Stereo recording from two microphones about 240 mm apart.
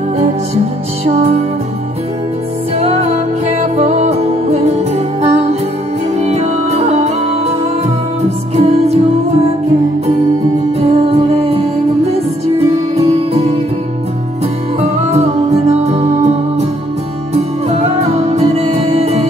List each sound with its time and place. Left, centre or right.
1.0 s music: right
2.8 s music: right
8.5 s music: right
10.8 s music: right
14.8 s music: right
18.3 s music: right